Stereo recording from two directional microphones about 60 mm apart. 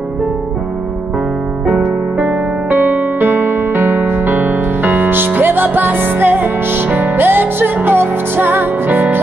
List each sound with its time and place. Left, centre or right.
1.7 s music: right